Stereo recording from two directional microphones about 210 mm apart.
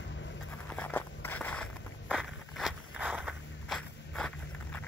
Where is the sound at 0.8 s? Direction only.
10° left (ahead or behind).